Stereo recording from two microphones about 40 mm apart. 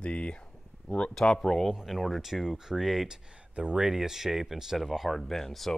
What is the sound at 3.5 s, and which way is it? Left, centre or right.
Speech, right.